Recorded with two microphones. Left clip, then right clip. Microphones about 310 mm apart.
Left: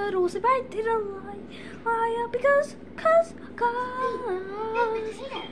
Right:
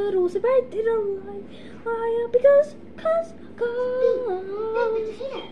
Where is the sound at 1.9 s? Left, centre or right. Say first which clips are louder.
Right 4 dB; centre.